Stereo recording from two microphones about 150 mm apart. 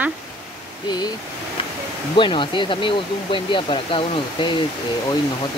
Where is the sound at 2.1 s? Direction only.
35° left (ahead or behind).